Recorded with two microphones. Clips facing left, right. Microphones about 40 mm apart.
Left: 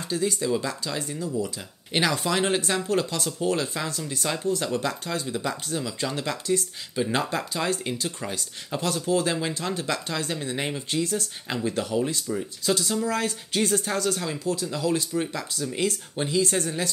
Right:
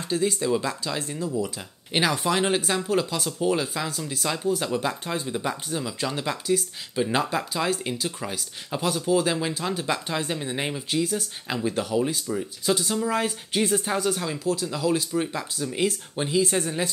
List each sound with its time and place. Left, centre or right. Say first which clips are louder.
0.0 s speech: right 2 dB; centre
4.7 s speech: right 1 dB; centre
5.8 s speech: even; centre
6.1 s speech: right 1 dB; right
7.0 s speech: right 1 dB; centre
11.4 s speech: right 2 dB; centre
12.6 s speech: right 1 dB; centre
14.4 s speech: right 3 dB; right
14.9 s speech: right 1 dB; centre